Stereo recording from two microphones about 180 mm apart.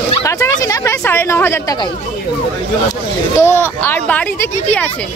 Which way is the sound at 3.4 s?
10° left (ahead or behind).